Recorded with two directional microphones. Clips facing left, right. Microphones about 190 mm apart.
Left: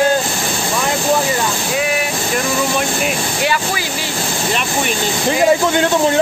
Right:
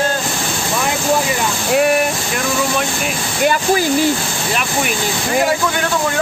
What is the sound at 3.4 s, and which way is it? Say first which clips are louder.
Speech: right 7 dB; 45° right (ahead or behind).